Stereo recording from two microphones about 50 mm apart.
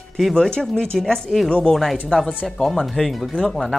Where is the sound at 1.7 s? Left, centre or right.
Centre.